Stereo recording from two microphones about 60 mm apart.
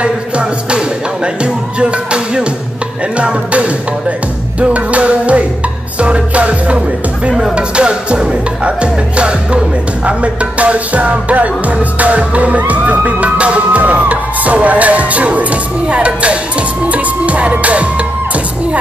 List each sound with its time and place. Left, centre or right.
0.0 s music: centre
3.2 s speech: right
4.6 s music: right